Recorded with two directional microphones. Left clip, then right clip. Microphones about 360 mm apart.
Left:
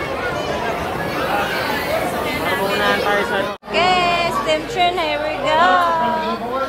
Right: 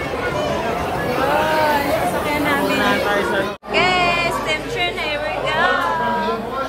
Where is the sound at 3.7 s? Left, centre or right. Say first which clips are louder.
Left 1 dB; centre.